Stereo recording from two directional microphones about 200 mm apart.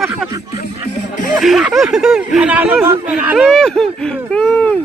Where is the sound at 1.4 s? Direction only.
Centre (ahead or behind).